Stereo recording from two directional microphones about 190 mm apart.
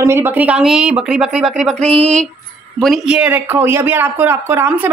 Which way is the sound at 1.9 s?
30° right (ahead or behind).